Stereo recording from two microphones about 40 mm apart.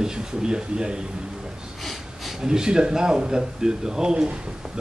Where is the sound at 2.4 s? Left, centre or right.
Centre.